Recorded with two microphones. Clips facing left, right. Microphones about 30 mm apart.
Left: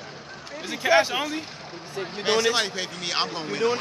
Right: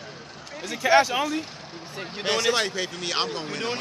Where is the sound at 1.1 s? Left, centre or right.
Centre.